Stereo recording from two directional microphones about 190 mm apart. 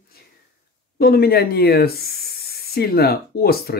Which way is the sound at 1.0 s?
55° left (ahead or behind).